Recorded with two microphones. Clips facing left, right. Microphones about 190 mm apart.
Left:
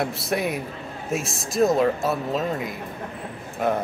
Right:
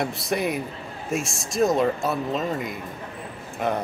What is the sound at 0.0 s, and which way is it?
A man's voice, centre (ahead or behind).